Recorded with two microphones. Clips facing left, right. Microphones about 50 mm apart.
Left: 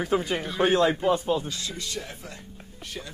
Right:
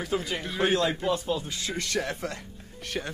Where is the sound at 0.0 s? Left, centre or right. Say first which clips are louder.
Left 4 dB; left.